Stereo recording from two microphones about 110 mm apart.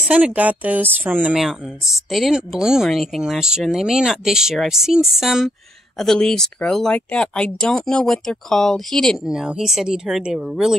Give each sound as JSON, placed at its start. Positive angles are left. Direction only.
{"t": 0.0, "sound": "a woman's voice", "side_deg": -15}
{"t": 1.3, "sound": "speech", "side_deg": -5}